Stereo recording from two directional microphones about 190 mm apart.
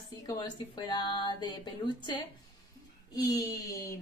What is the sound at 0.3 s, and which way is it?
A woman's voice, 20° left (ahead or behind).